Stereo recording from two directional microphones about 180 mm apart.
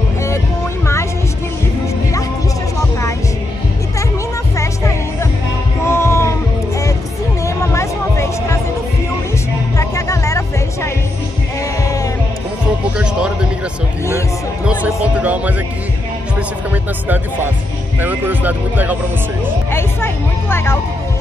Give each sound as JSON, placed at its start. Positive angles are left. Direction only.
{"t": 4.6, "sound": "music", "side_deg": 15}
{"t": 7.4, "sound": "music", "side_deg": 15}
{"t": 9.8, "sound": "music", "side_deg": 15}
{"t": 12.9, "sound": "music", "side_deg": -5}
{"t": 14.7, "sound": "music", "side_deg": -10}
{"t": 18.0, "sound": "speech", "side_deg": -10}
{"t": 19.7, "sound": "speech", "side_deg": 15}